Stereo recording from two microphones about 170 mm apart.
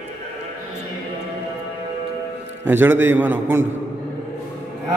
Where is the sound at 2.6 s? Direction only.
10° right (ahead or behind).